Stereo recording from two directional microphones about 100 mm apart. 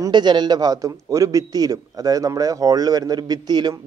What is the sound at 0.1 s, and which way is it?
A man's voice, 50° right (ahead or behind).